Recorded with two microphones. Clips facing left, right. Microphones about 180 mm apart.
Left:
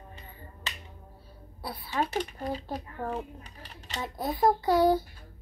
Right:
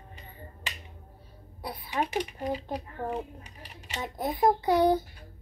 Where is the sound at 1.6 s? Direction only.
15° right (ahead or behind).